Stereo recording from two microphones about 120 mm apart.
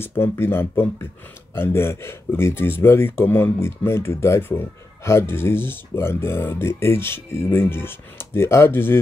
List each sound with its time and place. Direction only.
0.2 s speech: 20° left (ahead or behind)